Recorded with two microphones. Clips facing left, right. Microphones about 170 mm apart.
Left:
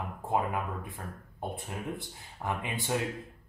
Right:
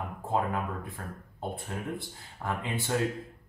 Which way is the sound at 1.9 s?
15° left (ahead or behind).